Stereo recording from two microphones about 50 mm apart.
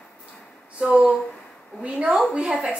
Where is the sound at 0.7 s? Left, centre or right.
Right.